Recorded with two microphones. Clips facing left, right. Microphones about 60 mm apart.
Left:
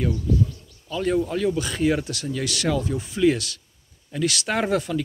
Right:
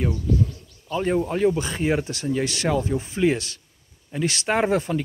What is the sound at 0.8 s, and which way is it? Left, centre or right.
Speech, right.